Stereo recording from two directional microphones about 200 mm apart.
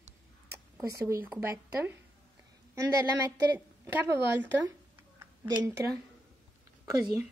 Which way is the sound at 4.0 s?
10° right (ahead or behind).